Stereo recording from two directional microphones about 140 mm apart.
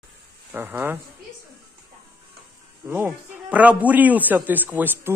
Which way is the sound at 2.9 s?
15° right (ahead or behind).